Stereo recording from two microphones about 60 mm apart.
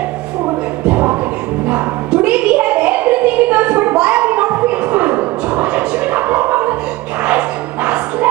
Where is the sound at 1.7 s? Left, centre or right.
Centre.